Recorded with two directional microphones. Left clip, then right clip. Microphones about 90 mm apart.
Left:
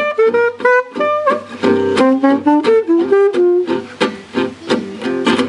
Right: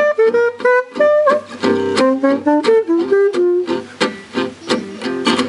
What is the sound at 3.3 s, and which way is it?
Music, 20° right (ahead or behind).